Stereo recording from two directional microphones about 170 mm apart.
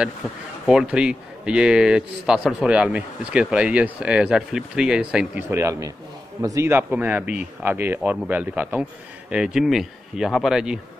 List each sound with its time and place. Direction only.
0.7 s speech: 5° right (ahead or behind)
5.5 s speech: 15° right (ahead or behind)